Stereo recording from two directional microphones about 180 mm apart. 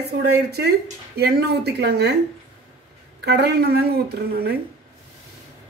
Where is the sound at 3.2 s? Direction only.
65° right (ahead or behind).